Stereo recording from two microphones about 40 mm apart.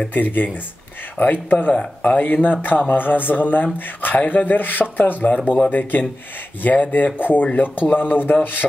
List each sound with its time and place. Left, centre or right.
0.1 s speech: left